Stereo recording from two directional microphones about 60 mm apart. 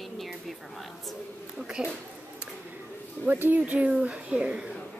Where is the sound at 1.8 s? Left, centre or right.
Centre.